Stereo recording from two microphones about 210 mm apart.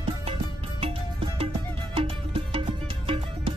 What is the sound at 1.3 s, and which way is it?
Music, 25° right (ahead or behind).